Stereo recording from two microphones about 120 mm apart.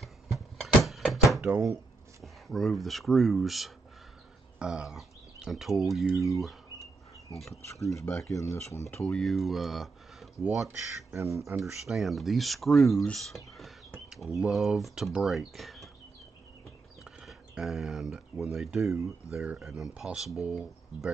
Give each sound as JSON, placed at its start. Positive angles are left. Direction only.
{"t": 0.0, "sound": "music", "side_deg": 0}
{"t": 2.2, "sound": "speech", "side_deg": 0}
{"t": 7.6, "sound": "speech", "side_deg": 25}
{"t": 8.9, "sound": "speech", "side_deg": 10}
{"t": 11.1, "sound": "speech", "side_deg": -25}
{"t": 11.5, "sound": "speech", "side_deg": 0}
{"t": 17.0, "sound": "speech", "side_deg": -5}